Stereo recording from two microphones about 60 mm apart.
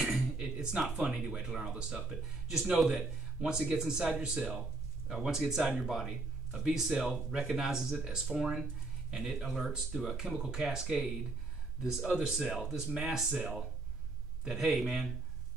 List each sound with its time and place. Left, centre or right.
0.4 s speech: centre
2.0 s speech: centre
3.0 s speech: centre
5.9 s speech: centre